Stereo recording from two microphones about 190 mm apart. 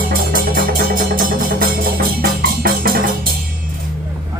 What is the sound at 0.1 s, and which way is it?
Music, 50° right (ahead or behind).